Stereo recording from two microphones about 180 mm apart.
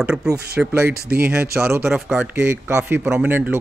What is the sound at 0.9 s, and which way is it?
Speech, 60° right (ahead or behind).